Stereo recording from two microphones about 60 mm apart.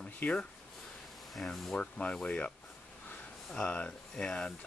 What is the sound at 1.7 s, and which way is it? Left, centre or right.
Speech, centre.